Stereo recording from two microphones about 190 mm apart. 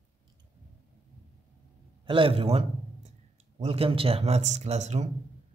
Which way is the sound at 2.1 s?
30° right (ahead or behind).